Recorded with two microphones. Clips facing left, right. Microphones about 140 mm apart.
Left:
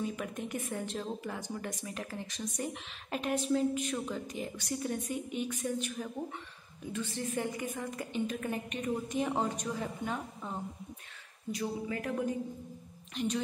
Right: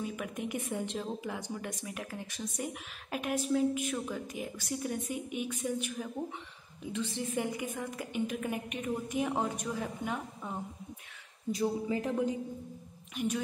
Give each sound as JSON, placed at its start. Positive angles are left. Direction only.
{"t": 0.0, "sound": "a woman's voice", "side_deg": -5}
{"t": 11.5, "sound": "speech", "side_deg": -30}
{"t": 13.1, "sound": "speech", "side_deg": -10}